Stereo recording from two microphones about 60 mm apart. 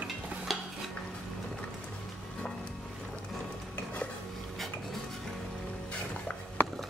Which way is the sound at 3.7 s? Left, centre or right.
Left.